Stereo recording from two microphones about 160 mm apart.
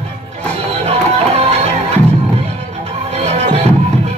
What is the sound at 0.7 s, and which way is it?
Music, 40° right (ahead or behind).